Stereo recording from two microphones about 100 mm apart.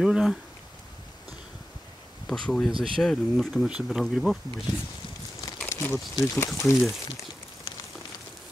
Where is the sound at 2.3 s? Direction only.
5° left (ahead or behind).